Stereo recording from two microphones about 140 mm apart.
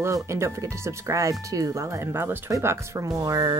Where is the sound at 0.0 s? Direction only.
20° right (ahead or behind).